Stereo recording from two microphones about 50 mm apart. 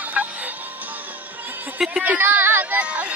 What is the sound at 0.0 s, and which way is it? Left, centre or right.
Music, right.